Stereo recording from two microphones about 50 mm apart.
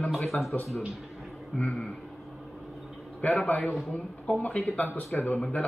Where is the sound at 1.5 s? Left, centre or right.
Centre.